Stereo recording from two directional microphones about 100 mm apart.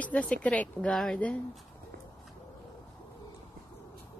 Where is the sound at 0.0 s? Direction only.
15° left (ahead or behind).